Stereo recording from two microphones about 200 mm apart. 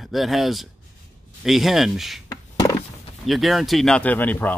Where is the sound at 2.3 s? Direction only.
15° left (ahead or behind).